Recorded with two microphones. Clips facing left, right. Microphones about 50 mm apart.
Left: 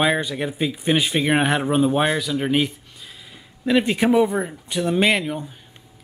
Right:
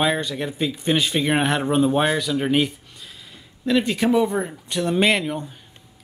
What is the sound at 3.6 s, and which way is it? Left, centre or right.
Speech, centre.